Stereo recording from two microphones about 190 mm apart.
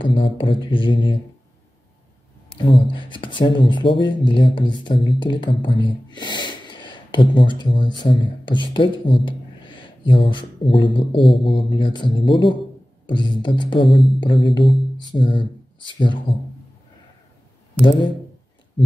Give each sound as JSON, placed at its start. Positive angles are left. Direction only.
{"t": 0.0, "sound": "speech", "side_deg": 25}
{"t": 2.5, "sound": "speech", "side_deg": 25}